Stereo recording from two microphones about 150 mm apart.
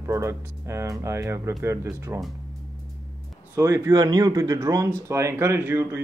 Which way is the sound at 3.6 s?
25° right (ahead or behind).